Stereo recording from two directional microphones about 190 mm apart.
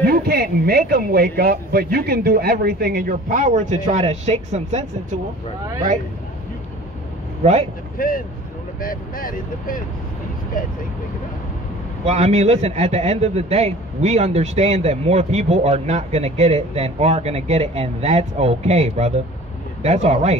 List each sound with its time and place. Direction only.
0.0 s speech: 55° right (ahead or behind); by 5.2 s 35° right (ahead or behind)
8.0 s speech: 50° left (ahead or behind)
12.1 s a man's voice: 35° right (ahead or behind)